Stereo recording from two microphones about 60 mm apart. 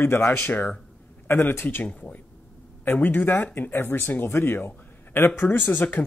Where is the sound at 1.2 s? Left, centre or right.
Left.